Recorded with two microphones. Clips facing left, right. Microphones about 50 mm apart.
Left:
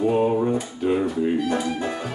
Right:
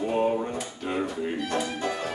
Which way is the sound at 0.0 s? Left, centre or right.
Centre.